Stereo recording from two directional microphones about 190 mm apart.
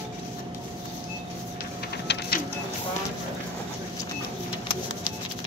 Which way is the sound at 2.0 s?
65° left (ahead or behind).